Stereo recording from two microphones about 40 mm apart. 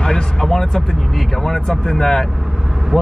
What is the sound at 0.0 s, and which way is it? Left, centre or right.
Speech, centre.